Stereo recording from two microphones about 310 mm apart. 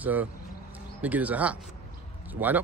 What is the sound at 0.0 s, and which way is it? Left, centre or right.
Moo, centre.